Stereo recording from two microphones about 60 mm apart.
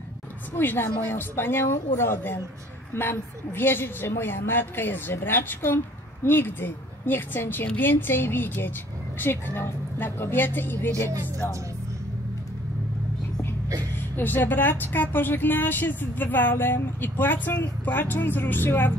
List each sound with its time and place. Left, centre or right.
0.6 s speech: left
11.1 s speech: right
14.1 s speech: left